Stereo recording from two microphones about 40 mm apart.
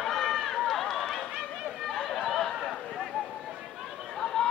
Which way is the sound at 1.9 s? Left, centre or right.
Centre.